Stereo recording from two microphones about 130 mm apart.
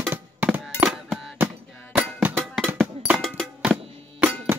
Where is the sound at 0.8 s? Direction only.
Centre (ahead or behind).